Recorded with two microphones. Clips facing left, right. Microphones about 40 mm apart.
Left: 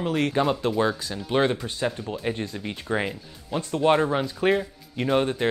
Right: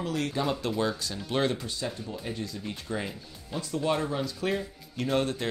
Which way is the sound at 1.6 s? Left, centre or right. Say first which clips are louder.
Left 6 dB; left.